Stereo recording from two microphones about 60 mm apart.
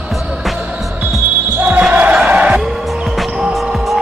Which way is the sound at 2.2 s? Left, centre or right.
Right.